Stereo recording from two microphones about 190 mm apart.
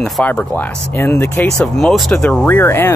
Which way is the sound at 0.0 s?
5° left (ahead or behind).